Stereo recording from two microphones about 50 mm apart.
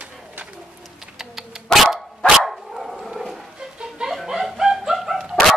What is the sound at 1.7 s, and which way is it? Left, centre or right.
Dog, centre.